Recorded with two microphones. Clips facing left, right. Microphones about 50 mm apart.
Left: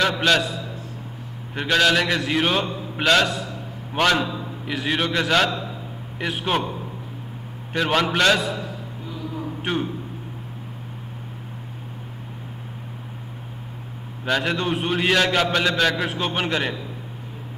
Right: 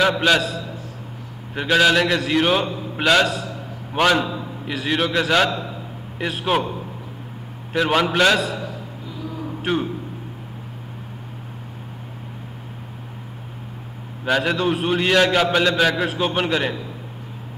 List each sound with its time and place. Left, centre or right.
0.0 s a man's voice: centre
0.4 s a man's voice: right
1.5 s a man's voice: centre
7.7 s a man's voice: centre
8.4 s a man's voice: right
9.6 s a man's voice: centre
14.2 s a man's voice: centre